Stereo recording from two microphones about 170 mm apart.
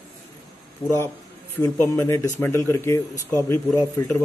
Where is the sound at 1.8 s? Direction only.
15° left (ahead or behind).